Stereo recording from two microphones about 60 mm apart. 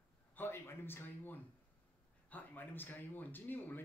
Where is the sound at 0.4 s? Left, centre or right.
Left.